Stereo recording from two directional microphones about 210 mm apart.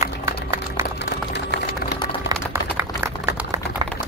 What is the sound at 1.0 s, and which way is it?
Music, 50° left (ahead or behind).